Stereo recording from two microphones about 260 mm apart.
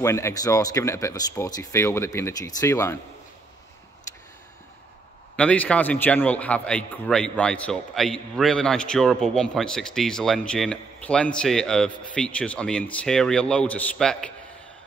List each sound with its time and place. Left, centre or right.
0.0 s speech: centre
5.3 s a man's voice: centre